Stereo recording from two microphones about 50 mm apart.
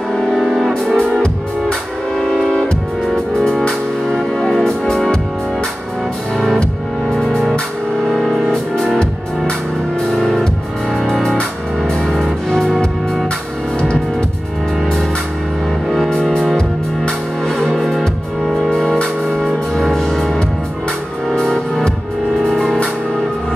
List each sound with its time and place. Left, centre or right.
0.1 s music: centre
1.2 s music: centre
3.3 s music: centre
6.3 s music: centre
8.1 s music: centre
15.9 s music: centre
19.4 s music: centre